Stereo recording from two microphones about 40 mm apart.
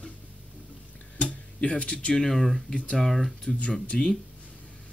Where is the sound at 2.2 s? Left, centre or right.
Centre.